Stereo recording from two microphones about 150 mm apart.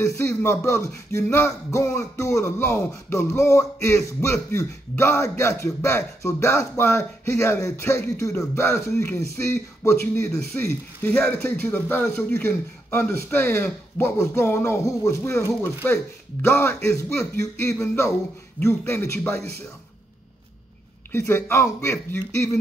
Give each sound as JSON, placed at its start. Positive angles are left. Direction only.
{"t": 0.0, "sound": "speech", "side_deg": 15}
{"t": 21.1, "sound": "speech", "side_deg": 15}